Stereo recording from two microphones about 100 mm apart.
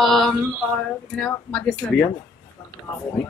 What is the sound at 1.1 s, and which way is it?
Speech, 10° left (ahead or behind).